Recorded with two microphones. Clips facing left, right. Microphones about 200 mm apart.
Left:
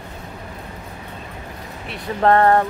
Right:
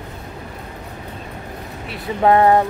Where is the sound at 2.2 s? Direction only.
10° right (ahead or behind).